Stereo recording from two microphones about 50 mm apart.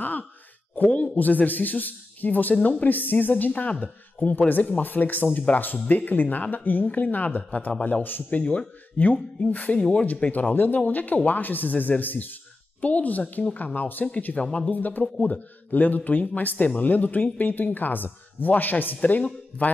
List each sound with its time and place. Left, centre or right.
0.0 s speech: left
10.5 s speech: left